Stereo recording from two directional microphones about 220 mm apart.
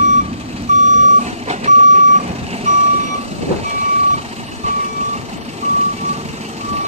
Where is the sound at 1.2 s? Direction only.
30° right (ahead or behind).